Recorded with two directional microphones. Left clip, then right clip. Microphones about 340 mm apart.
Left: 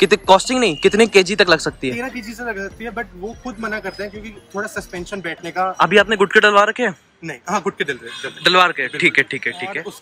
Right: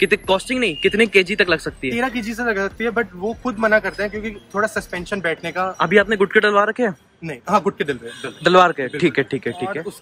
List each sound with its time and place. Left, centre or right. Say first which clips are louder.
0.0 s speech: left 5 dB; centre